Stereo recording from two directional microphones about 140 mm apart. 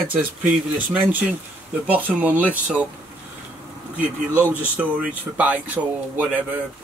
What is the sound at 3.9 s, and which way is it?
Speech, 10° right (ahead or behind).